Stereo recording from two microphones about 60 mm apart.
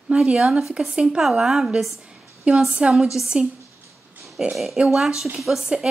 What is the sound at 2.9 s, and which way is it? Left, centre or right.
Speech, centre.